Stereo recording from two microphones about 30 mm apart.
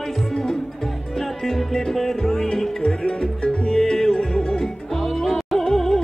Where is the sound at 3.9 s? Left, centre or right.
Centre.